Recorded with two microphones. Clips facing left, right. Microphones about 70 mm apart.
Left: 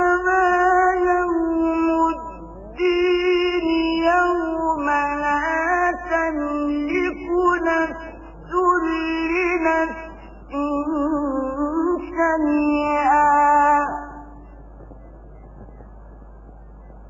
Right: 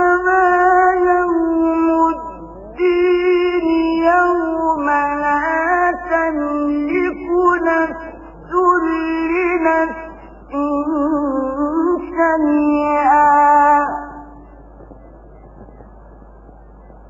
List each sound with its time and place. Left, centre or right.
0.0 s howl: centre
2.4 s music: centre
2.7 s music: right
3.2 s a sound: right
4.1 s music: centre
8.0 s a sound: right
8.5 s music: centre
8.9 s music: right
9.2 s music: centre